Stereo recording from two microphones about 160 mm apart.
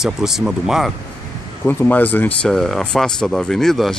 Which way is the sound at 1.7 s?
10° left (ahead or behind).